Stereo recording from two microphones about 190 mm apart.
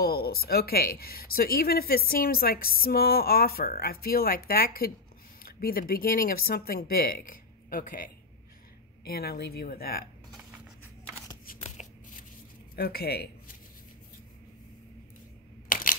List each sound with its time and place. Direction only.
0.0 s speech: 55° left (ahead or behind)
11.6 s shuffling cards: 40° left (ahead or behind)
12.7 s speech: 55° left (ahead or behind)
15.7 s single-lens reflex camera: 45° left (ahead or behind)